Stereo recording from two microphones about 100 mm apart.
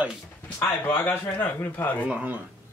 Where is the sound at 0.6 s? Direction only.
20° left (ahead or behind).